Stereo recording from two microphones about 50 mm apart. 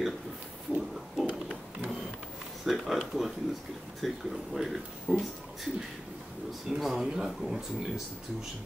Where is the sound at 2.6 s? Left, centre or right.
Centre.